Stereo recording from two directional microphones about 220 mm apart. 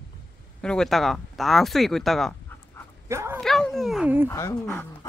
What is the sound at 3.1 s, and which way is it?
Dog, 10° right (ahead or behind).